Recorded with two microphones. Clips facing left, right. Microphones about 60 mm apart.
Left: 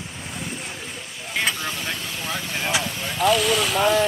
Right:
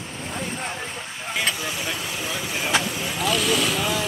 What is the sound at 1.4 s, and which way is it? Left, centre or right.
Vehicle, centre.